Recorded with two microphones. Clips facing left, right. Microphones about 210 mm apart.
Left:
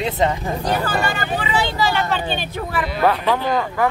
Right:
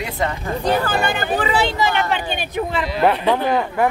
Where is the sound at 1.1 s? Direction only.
50° right (ahead or behind).